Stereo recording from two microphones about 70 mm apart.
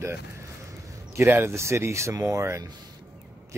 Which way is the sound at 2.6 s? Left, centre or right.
Right.